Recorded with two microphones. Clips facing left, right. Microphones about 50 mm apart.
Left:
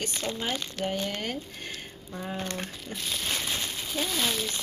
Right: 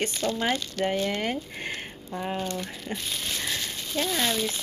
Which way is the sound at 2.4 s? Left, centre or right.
Left.